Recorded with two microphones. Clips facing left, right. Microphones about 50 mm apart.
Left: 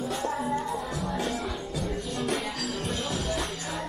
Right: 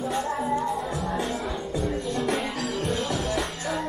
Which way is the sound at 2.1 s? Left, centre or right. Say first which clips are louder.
Right 3 dB; right.